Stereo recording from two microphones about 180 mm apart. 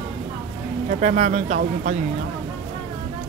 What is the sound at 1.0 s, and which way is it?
Speech, 45° right (ahead or behind).